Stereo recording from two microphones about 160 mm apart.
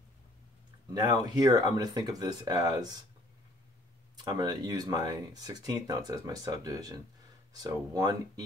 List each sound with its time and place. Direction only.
0.9 s speech: 25° right (ahead or behind)
4.2 s speech: 25° right (ahead or behind)